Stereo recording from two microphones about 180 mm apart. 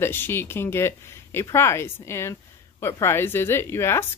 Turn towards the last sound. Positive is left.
turn(degrees=15)  # may be behind; listen again after turning